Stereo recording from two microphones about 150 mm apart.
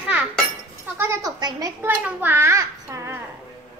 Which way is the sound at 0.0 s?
10° right (ahead or behind).